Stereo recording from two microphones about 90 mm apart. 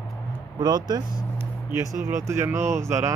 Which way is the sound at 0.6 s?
50° right (ahead or behind).